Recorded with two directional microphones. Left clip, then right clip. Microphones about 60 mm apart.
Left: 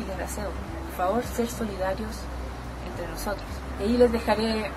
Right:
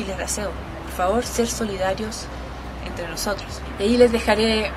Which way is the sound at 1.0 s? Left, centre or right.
Centre.